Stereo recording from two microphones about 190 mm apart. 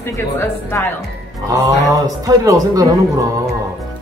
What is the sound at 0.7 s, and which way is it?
Speech, 15° left (ahead or behind).